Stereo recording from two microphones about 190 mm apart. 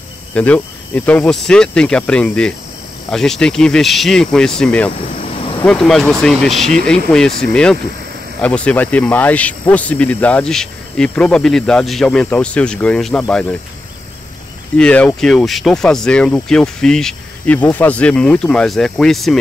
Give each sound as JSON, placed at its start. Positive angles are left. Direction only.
{"t": 0.3, "sound": "speech", "side_deg": 5}
{"t": 6.5, "sound": "speech", "side_deg": -35}
{"t": 6.9, "sound": "speech", "side_deg": 5}
{"t": 14.8, "sound": "speech", "side_deg": 5}